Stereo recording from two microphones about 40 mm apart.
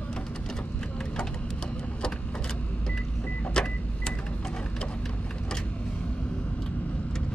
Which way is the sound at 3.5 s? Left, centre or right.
Centre.